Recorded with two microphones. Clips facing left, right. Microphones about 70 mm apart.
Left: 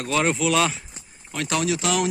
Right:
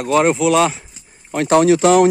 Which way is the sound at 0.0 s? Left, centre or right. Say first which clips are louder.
Right 8 dB; centre.